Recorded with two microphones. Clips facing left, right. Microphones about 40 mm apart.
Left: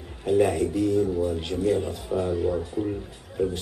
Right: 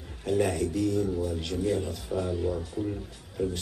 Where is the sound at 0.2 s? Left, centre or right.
Centre.